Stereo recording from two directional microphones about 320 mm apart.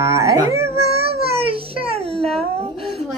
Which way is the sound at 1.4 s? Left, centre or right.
Centre.